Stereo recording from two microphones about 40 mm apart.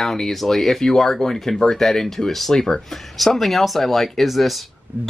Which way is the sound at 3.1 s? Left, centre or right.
Centre.